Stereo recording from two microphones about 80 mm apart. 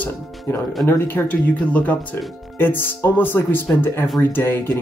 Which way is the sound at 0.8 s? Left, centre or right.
Left.